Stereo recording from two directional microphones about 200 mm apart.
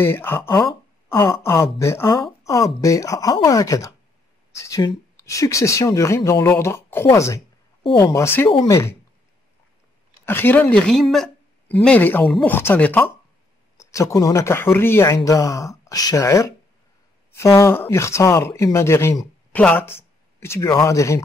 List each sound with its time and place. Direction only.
0.0 s speech: 10° left (ahead or behind)
1.0 s a sound: 10° left (ahead or behind)
1.4 s speech: 15° left (ahead or behind)
10.2 s speech: 10° left (ahead or behind)